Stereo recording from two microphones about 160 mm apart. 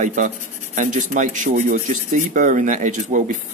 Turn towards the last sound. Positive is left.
turn(degrees=-55)  # may be behind; listen again after turning